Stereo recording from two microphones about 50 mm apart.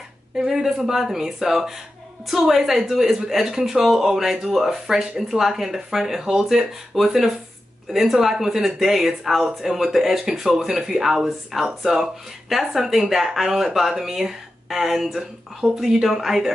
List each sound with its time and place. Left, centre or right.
0.4 s speech: centre
10.7 s speech: centre
11.0 s speech: centre